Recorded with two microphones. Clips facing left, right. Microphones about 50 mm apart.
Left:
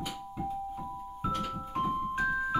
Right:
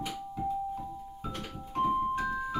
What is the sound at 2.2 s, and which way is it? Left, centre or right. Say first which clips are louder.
Keyboard: left 3 dB; centre.